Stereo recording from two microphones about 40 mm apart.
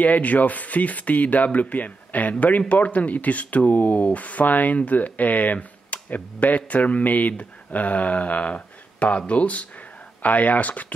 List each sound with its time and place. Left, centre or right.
0.0 s speech: left